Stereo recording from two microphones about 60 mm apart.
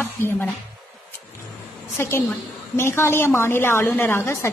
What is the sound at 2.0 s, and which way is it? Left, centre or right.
A woman's voice, left.